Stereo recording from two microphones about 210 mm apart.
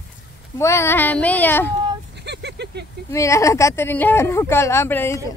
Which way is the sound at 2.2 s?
55° right (ahead or behind).